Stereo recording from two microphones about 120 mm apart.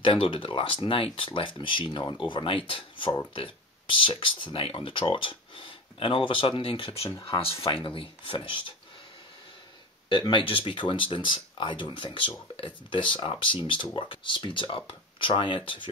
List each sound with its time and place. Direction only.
0.0 s speech: 45° left (ahead or behind)
10.0 s speech: 45° left (ahead or behind)